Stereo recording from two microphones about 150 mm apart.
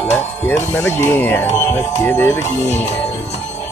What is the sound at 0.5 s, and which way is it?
Speech, 15° left (ahead or behind).